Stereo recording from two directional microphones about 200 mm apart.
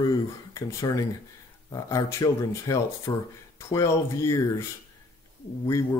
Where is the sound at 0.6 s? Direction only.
15° left (ahead or behind).